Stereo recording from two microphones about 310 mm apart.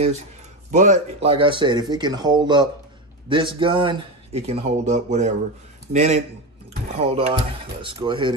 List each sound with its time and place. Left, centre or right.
0.7 s speech: right